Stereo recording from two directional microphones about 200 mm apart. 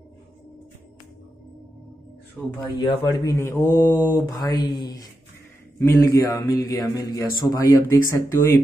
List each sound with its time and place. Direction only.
2.8 s speech: 20° left (ahead or behind)
6.6 s mantra: 20° left (ahead or behind)
8.1 s speech: 15° left (ahead or behind)